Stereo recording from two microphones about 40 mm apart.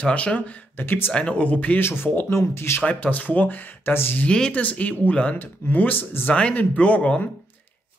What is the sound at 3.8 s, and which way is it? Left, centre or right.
Speech, left.